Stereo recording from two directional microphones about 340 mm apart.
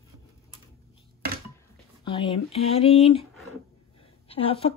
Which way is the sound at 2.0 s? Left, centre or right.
Centre.